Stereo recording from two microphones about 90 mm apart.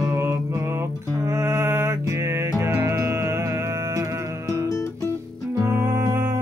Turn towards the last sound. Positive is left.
turn(degrees=-30)  # may be behind; listen again after turning